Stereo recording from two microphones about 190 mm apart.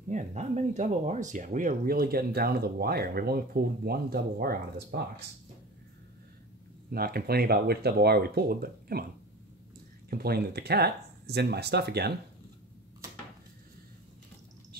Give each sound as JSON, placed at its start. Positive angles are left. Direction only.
{"t": 0.1, "sound": "speech", "side_deg": -35}
{"t": 6.9, "sound": "speech", "side_deg": -50}
{"t": 10.0, "sound": "speech", "side_deg": -55}